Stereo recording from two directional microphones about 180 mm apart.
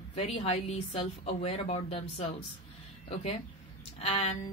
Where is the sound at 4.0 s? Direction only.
35° left (ahead or behind).